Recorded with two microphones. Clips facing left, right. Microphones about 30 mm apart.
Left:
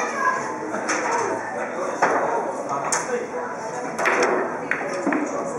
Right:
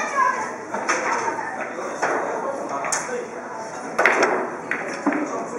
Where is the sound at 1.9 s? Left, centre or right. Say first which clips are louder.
Left 3 dB; centre.